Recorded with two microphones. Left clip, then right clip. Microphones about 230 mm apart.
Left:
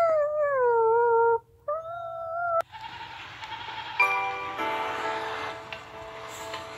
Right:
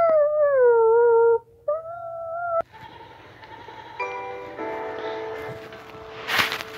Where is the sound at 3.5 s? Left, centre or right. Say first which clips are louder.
Left 4 dB; centre.